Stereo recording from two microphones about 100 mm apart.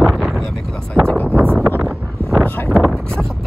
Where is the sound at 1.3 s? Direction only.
20° right (ahead or behind).